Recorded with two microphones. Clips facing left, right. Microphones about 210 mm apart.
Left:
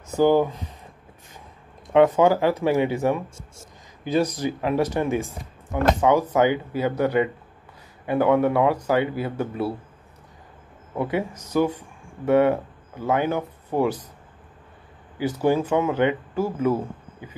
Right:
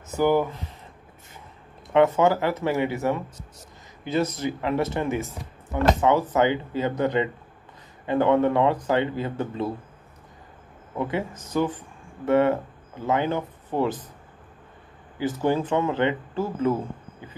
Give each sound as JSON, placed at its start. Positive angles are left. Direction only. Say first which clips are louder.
{"t": 0.2, "sound": "speech", "louder": "left 3 dB", "side_deg": 15}
{"t": 2.0, "sound": "speech", "louder": "left 2 dB", "side_deg": 10}
{"t": 11.0, "sound": "speech", "louder": "left 2 dB", "side_deg": 15}
{"t": 15.1, "sound": "speech", "louder": "left 2 dB", "side_deg": 10}